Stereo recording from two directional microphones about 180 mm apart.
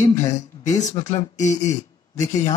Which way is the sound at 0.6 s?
40° left (ahead or behind).